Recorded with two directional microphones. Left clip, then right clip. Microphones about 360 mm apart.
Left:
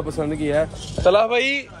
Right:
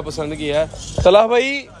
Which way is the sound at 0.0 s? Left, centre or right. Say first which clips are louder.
Even; centre.